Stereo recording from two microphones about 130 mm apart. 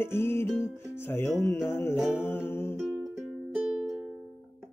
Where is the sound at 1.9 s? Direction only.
Centre (ahead or behind).